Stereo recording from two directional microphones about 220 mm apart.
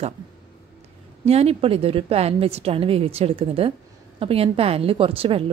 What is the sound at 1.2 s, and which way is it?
Speech, 30° right (ahead or behind).